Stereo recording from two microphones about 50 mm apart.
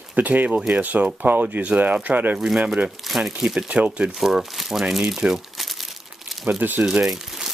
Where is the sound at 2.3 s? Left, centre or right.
Centre.